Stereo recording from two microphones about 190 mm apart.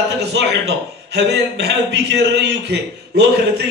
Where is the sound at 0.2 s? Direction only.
65° right (ahead or behind).